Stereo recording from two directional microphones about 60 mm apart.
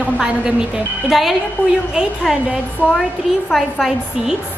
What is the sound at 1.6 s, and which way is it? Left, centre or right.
Speech, left.